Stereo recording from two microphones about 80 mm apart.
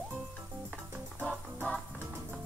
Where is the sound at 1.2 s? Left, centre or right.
Centre.